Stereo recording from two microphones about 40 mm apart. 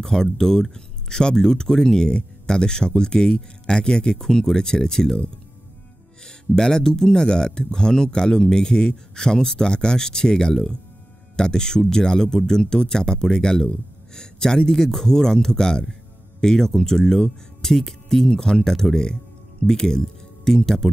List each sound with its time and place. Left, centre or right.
0.0 s speech: centre
6.2 s speech: centre